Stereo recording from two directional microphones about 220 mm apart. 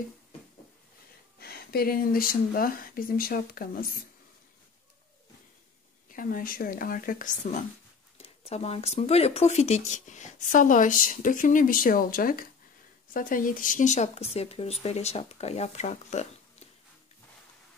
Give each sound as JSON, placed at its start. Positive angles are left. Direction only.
{"t": 1.4, "sound": "speech", "side_deg": 45}
{"t": 6.0, "sound": "speech", "side_deg": 40}